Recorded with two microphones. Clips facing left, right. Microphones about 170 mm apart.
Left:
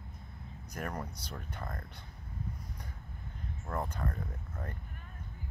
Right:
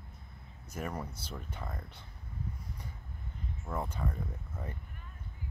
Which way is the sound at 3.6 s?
5° right (ahead or behind).